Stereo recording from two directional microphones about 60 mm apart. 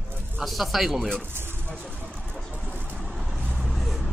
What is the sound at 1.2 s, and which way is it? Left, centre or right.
Speech, right.